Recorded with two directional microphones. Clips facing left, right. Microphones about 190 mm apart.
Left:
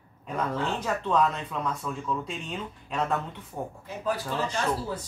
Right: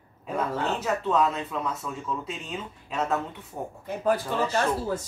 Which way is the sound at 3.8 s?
55° right (ahead or behind).